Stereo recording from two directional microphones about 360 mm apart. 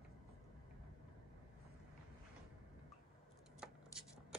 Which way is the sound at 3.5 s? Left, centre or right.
Centre.